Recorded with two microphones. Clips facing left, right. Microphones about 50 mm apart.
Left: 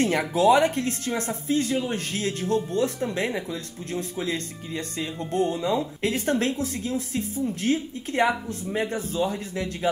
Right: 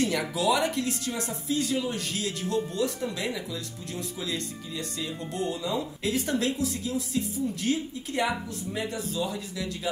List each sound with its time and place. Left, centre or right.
0.0 s speech: left